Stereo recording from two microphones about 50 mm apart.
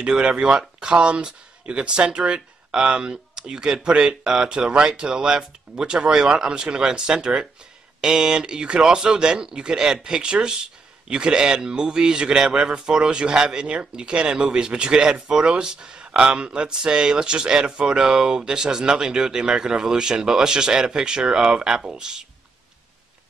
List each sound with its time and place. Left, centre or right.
0.0 s speech: centre